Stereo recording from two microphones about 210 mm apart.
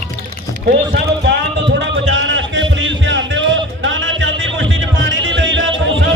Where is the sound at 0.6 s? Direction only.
55° right (ahead or behind).